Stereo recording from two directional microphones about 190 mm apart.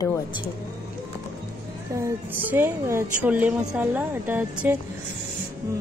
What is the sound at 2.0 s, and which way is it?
A woman's voice, 15° right (ahead or behind).